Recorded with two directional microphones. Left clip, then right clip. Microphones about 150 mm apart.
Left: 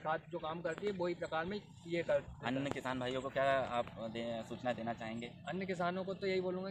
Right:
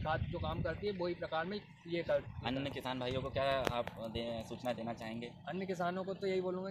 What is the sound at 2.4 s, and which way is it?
Speech, 15° right (ahead or behind).